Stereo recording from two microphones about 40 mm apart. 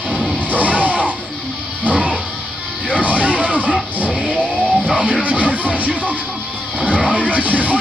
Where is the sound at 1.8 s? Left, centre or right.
Right.